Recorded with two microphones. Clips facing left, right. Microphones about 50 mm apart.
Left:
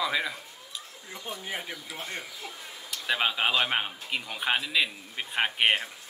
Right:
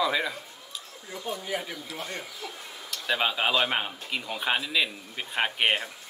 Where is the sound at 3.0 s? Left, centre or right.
Centre.